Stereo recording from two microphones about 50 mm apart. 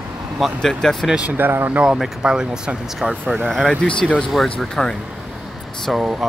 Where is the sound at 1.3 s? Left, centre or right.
Right.